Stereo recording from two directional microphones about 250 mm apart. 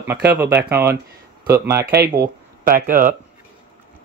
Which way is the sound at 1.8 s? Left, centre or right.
Right.